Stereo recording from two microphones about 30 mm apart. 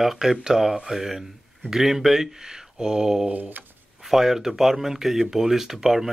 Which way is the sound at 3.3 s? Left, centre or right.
Right.